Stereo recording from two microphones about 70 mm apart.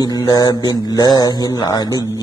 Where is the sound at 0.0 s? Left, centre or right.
Left.